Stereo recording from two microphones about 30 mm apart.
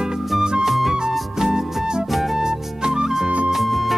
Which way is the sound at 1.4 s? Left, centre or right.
Right.